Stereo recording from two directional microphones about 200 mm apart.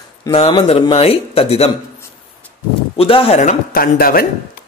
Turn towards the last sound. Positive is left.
turn(degrees=45)  # may be behind; listen again after turning